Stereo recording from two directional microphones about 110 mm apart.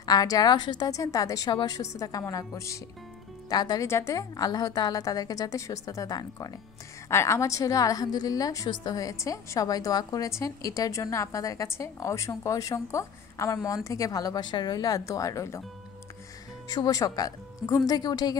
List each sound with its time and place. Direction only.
0.0 s a woman's voice: 35° left (ahead or behind)
1.5 s a woman's voice: 45° left (ahead or behind)
1.8 s a woman's voice: 30° left (ahead or behind)
3.4 s speech: 40° left (ahead or behind)
3.8 s a woman's voice: 25° left (ahead or behind)
16.6 s a woman's voice: 35° left (ahead or behind)